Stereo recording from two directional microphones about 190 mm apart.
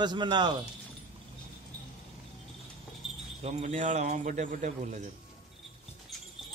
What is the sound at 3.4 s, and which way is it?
A man's voice, 40° right (ahead or behind).